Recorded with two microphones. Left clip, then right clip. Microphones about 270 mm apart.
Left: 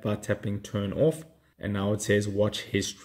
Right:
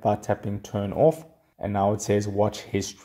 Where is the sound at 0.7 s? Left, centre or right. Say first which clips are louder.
Right 5 dB; right.